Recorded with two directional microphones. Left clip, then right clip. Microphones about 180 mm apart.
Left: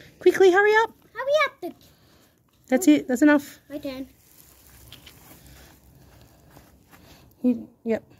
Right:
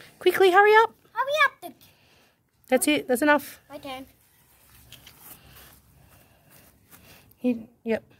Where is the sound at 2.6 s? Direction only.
25° right (ahead or behind).